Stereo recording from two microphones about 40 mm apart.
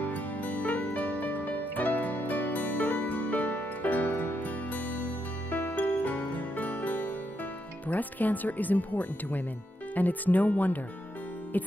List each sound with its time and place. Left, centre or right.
0.0 s music: left
7.9 s speech: left